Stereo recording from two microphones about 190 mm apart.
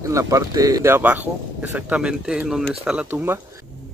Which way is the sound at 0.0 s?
15° right (ahead or behind).